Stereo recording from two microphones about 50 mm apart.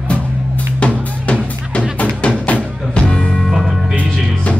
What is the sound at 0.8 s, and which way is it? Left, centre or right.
Drum, left.